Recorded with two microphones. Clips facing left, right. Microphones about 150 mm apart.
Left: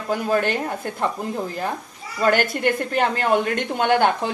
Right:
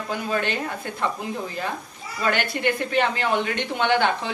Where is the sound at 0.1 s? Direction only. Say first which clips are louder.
Left 5 dB; 45° left (ahead or behind).